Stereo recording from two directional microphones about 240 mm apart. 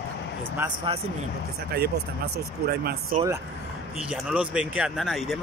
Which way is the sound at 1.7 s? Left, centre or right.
Right.